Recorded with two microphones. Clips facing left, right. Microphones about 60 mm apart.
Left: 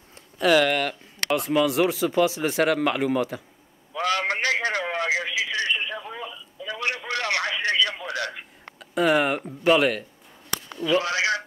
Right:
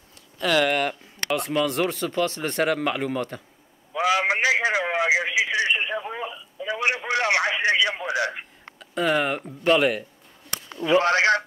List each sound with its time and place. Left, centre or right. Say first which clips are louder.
0.6 s speech: even; centre
3.9 s a sound: right 3 dB; centre
8.7 s speech: left 2 dB; centre
10.7 s radio: right 2 dB; right
11.0 s speech: right 8 dB; right